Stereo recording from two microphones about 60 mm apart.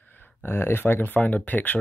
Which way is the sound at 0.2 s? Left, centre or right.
Left.